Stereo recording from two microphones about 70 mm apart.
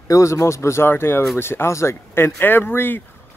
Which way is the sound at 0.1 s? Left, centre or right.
Left.